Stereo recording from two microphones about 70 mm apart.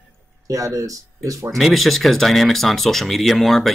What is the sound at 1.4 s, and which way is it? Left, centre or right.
Speech, centre.